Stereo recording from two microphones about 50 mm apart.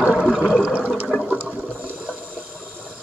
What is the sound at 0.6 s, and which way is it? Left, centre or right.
Water, right.